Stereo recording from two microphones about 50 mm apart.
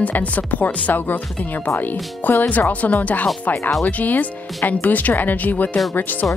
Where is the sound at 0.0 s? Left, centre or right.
Left.